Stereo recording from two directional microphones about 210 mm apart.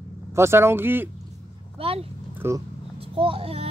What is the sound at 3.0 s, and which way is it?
Speech, 25° right (ahead or behind).